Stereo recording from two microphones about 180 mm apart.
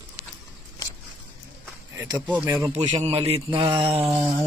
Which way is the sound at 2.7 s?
35° right (ahead or behind).